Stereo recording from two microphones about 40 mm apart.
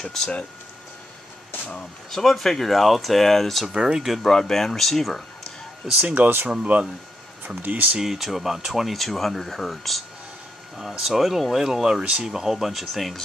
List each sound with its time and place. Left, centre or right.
2.0 s speech: centre
3.7 s speech: centre
4.3 s speech: centre
5.9 s speech: right
7.4 s speech: right
8.0 s speech: centre
8.9 s speech: centre
10.8 s speech: centre
12.0 s speech: right
12.3 s speech: centre